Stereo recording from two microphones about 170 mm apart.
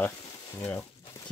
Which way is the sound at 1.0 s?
20° left (ahead or behind).